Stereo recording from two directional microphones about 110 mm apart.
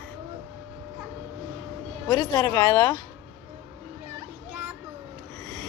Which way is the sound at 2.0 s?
40° left (ahead or behind).